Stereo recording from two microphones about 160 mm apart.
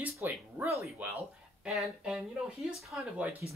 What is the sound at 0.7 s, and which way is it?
Speech, centre (ahead or behind).